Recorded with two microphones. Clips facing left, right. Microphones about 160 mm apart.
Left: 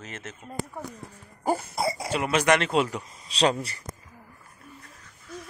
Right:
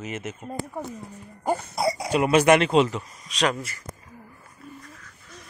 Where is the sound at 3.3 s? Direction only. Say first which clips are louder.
Left 2 dB; 30° left (ahead or behind).